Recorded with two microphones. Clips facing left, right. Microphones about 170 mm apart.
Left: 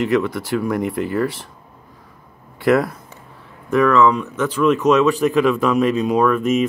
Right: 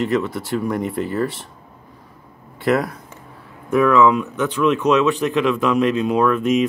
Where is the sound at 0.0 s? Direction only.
Centre (ahead or behind).